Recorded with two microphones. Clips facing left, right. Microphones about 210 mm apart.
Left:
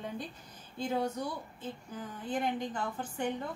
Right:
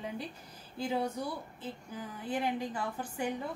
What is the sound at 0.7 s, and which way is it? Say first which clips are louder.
A woman's voice: even; 5° right (ahead or behind).